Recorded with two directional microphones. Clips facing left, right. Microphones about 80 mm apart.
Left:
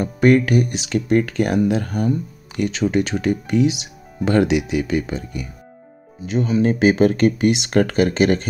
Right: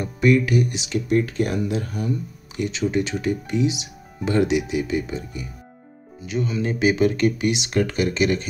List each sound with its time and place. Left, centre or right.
0.0 s speech: left
6.2 s speech: left